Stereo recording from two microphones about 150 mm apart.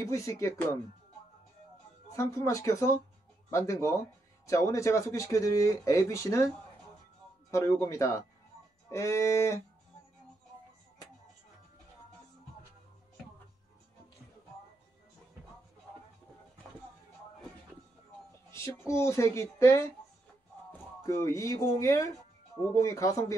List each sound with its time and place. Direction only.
0.0 s speech: 20° left (ahead or behind)
2.0 s speech: 20° left (ahead or behind)
7.5 s speech: 20° left (ahead or behind)
18.5 s speech: 20° left (ahead or behind)
21.0 s speech: 20° left (ahead or behind)